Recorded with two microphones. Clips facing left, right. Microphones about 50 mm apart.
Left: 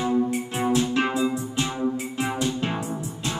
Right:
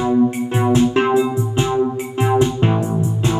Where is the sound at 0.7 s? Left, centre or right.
Right.